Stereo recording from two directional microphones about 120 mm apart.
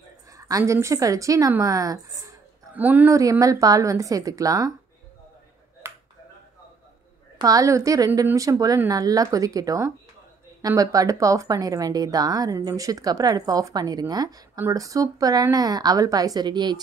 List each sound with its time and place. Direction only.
0.4 s a woman's voice: 25° right (ahead or behind)
2.7 s speech: 15° right (ahead or behind)
3.1 s a woman's voice: 25° right (ahead or behind)
5.8 s finger snapping: 25° right (ahead or behind)
7.3 s a woman's voice: 30° right (ahead or behind)